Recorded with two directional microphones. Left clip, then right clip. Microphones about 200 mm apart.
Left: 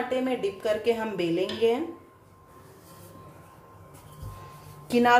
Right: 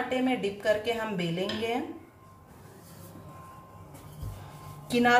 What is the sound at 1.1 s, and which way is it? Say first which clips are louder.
Speech: left 4 dB; 35° left (ahead or behind).